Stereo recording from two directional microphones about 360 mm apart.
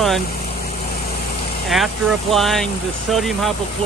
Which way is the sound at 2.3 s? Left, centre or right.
Centre.